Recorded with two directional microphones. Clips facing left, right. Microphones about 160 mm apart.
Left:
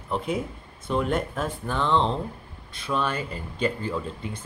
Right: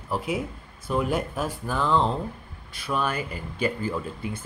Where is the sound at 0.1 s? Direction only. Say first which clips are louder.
Even; 5° right (ahead or behind).